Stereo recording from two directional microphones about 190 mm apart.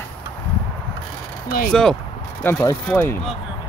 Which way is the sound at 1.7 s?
5° left (ahead or behind).